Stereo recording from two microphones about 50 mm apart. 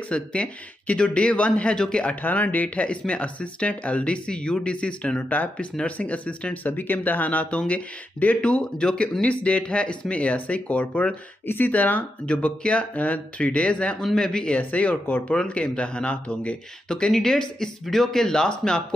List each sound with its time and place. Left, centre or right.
0.1 s speech: left
2.0 s speech: left
11.4 s speech: left
11.7 s speech: left
14.0 s speech: centre
14.6 s speech: left
17.1 s speech: centre